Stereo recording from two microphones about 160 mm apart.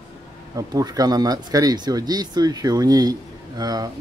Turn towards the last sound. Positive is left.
turn(degrees=-25)  # may be behind; listen again after turning